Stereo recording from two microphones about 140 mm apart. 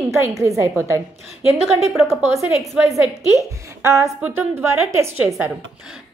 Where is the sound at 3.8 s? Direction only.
20° right (ahead or behind).